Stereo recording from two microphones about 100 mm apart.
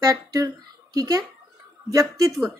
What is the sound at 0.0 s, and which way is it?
Speech, 40° right (ahead or behind).